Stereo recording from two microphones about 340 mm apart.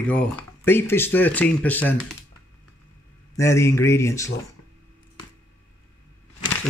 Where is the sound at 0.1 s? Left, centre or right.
Centre.